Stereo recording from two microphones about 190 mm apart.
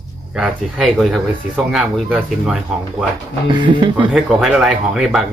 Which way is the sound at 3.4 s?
25° right (ahead or behind).